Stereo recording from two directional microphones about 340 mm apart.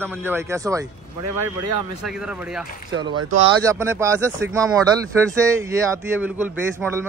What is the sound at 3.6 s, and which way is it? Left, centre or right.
Speech, centre.